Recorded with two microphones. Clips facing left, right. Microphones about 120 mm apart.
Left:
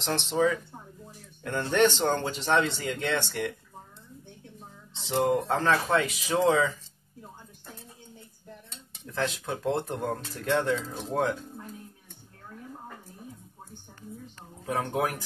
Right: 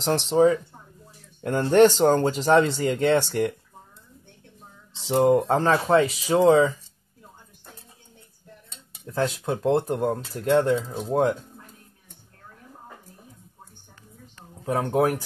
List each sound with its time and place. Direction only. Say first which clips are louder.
0.0 s speech: right 7 dB; 35° right (ahead or behind)
5.2 s speech: right 7 dB; 20° right (ahead or behind)
5.5 s speech: right 5 dB; 35° right (ahead or behind)
9.0 s speech: right 5 dB; 30° right (ahead or behind)
14.6 s speech: right 6 dB; 35° right (ahead or behind)